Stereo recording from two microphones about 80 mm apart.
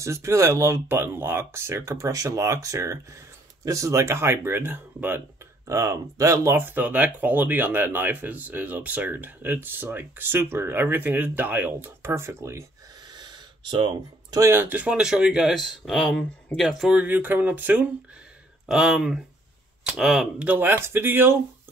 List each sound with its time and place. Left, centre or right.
0.0 s speech: right
5.7 s speech: right
13.1 s gasp: right
14.4 s speech: right; by 16.9 s centre
16.9 s speech: centre
18.7 s speech: centre
20.4 s speech: right